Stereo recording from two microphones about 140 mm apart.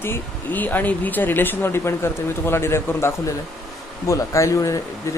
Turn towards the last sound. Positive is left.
turn(degrees=20)  # may be behind; listen again after turning